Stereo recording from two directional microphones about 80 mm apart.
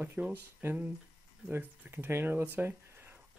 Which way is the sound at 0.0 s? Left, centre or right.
Right.